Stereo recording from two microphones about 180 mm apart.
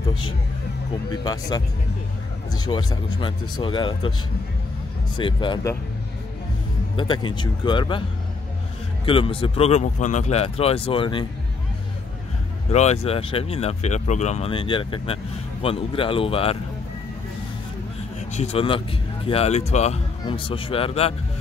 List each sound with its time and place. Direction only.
1.2 s speech: 20° left (ahead or behind)
5.1 s speech: 25° left (ahead or behind)
7.0 s speech: 25° left (ahead or behind)
9.0 s speech: 30° left (ahead or behind)
12.7 s speech: 35° left (ahead or behind)
18.3 s speech: 35° left (ahead or behind)